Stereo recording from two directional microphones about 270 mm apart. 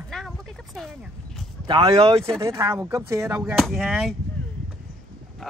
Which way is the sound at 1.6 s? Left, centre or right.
Centre.